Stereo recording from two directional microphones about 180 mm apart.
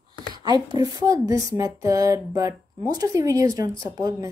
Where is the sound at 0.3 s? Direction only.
25° right (ahead or behind).